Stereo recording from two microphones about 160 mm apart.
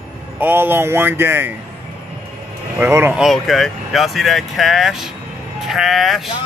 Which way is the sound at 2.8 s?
15° right (ahead or behind).